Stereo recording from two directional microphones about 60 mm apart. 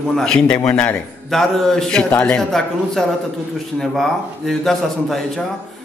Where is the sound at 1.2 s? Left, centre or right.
Centre.